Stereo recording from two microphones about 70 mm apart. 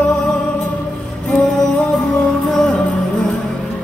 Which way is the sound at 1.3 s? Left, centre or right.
Centre.